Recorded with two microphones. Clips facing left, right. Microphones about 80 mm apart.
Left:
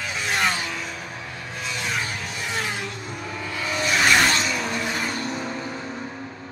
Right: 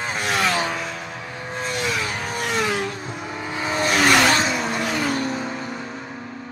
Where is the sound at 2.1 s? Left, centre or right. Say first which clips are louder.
Right 5 dB; right.